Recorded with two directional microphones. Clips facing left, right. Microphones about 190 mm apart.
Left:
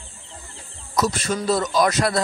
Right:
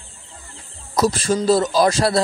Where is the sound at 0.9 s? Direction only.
35° right (ahead or behind).